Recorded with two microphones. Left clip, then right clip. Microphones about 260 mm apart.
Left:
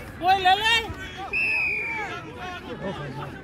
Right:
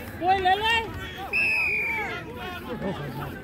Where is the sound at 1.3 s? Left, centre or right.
Right.